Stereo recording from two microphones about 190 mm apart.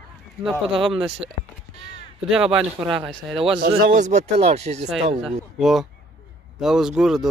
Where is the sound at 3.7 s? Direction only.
40° right (ahead or behind).